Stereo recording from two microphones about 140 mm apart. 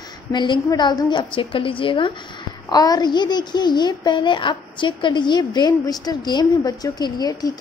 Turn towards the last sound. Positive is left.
turn(degrees=30)  # may be behind; listen again after turning